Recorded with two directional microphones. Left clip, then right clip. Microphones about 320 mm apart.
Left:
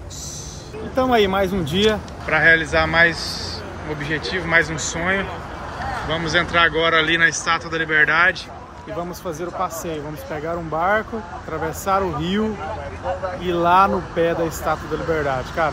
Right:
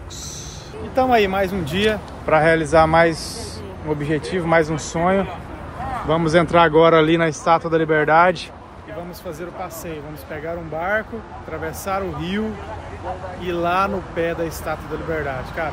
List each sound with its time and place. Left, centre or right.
1.0 s speech: centre
2.2 s speech: centre
10.8 s speech: centre
13.4 s speech: centre